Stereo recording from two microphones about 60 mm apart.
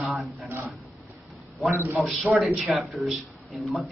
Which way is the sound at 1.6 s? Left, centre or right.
Right.